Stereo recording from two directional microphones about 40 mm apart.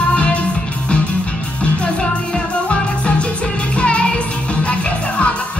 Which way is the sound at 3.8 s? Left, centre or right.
Left.